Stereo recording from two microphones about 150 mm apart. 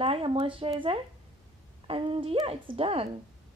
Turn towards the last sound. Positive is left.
turn(degrees=-40)  # may be behind; listen again after turning